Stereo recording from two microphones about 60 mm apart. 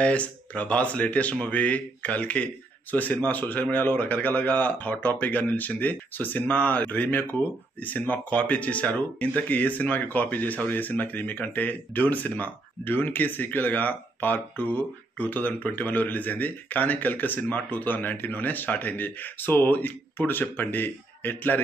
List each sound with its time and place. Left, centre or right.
0.0 s speech: left